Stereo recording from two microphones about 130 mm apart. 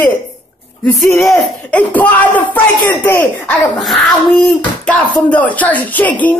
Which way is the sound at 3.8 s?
Centre (ahead or behind).